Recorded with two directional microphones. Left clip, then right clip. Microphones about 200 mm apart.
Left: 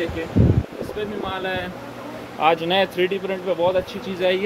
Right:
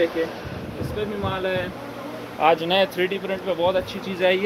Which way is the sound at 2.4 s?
25° left (ahead or behind).